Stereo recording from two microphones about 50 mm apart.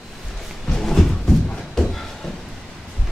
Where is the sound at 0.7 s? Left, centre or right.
Centre.